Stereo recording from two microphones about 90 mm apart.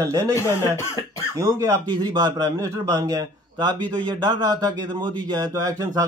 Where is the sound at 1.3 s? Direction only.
35° right (ahead or behind).